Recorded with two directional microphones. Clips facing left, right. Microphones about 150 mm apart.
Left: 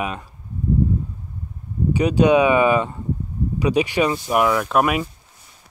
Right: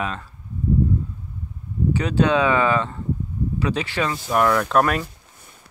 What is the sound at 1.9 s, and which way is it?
Speech, 15° left (ahead or behind).